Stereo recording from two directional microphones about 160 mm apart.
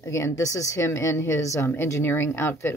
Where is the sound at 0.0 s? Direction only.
20° left (ahead or behind).